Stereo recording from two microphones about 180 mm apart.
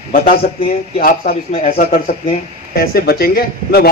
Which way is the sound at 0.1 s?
55° left (ahead or behind).